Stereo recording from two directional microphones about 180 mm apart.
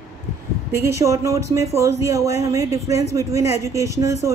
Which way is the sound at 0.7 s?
15° right (ahead or behind).